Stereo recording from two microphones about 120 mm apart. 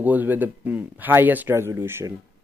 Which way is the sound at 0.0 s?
15° right (ahead or behind).